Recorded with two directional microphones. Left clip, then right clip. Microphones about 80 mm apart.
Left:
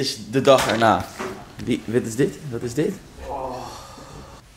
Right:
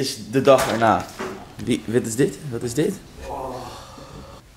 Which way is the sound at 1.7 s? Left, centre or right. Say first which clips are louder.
Right 1 dB; centre.